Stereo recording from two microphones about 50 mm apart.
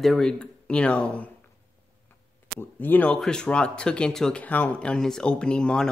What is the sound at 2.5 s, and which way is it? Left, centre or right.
Speech, left.